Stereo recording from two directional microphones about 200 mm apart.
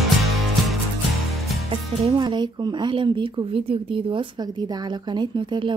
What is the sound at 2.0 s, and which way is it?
A woman's voice, 25° right (ahead or behind).